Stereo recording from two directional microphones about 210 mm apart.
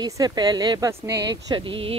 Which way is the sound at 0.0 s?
20° right (ahead or behind).